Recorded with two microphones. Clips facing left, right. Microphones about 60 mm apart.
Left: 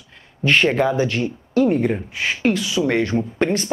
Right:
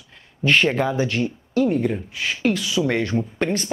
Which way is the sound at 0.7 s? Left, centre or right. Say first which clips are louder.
Left 3 dB; centre.